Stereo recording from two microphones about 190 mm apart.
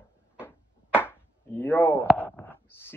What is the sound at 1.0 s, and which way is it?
Chopping, 10° left (ahead or behind).